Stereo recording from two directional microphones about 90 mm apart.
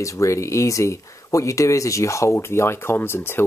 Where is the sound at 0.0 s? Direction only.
35° left (ahead or behind).